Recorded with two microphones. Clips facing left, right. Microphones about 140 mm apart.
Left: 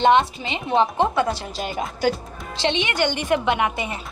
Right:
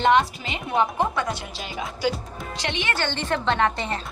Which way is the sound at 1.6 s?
50° left (ahead or behind).